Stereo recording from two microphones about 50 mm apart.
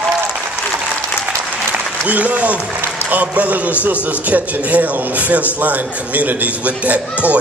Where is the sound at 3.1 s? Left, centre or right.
Right.